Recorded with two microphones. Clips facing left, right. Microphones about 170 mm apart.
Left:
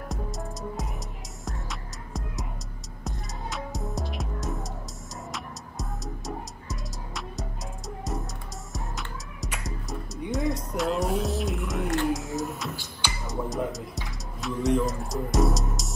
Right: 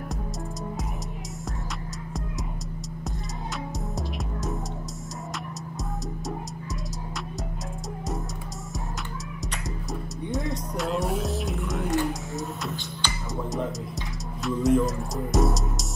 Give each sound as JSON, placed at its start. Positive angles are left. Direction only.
{"t": 3.9, "sound": "music", "side_deg": 0}
{"t": 10.3, "sound": "music", "side_deg": 0}
{"t": 12.1, "sound": "a sound", "side_deg": 0}
{"t": 13.3, "sound": "music", "side_deg": 0}